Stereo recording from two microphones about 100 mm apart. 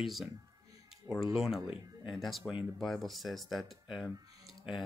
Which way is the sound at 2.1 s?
Centre (ahead or behind).